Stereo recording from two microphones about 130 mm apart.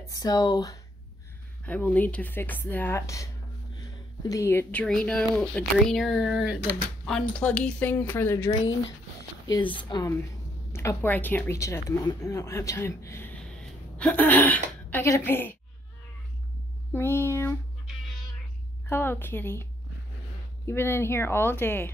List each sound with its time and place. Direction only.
0.0 s speech: 25° left (ahead or behind)
1.7 s speech: 10° left (ahead or behind)
4.2 s speech: 25° left (ahead or behind); by 6.6 s 5° right (ahead or behind)
7.1 s speech: 5° left (ahead or behind)
9.5 s speech: 40° left (ahead or behind)
10.7 s speech: 20° left (ahead or behind)
13.6 s a sound: 10° left (ahead or behind)
16.9 s speech: 20° left (ahead or behind)
18.9 s speech: 15° left (ahead or behind)